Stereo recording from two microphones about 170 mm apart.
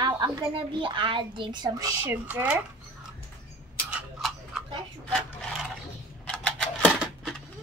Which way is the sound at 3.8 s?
Centre (ahead or behind).